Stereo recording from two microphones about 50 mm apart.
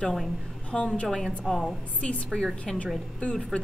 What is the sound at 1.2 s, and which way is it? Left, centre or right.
Speech, centre.